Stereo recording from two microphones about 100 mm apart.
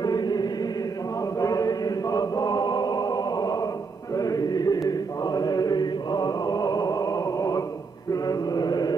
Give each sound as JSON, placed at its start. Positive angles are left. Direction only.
{"t": 0.0, "sound": "chant", "side_deg": 40}